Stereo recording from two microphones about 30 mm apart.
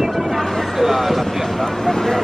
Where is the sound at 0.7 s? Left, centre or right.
Centre.